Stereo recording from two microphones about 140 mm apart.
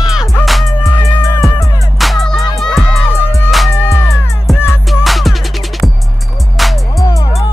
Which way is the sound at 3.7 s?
20° left (ahead or behind).